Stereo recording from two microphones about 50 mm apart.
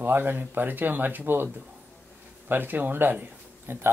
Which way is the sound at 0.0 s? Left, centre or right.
Right.